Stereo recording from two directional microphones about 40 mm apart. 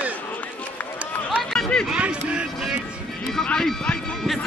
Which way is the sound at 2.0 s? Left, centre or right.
Right.